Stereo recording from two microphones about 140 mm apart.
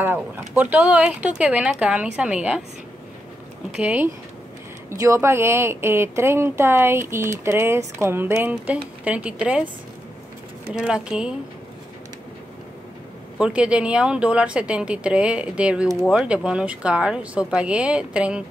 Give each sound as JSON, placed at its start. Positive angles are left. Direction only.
{"t": 0.4, "sound": "speech", "side_deg": -10}
{"t": 3.7, "sound": "speech", "side_deg": -10}
{"t": 10.7, "sound": "speech", "side_deg": -5}
{"t": 13.4, "sound": "speech", "side_deg": -10}